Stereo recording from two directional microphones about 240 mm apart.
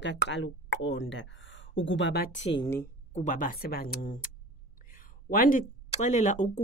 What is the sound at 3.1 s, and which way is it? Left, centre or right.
Speech, left.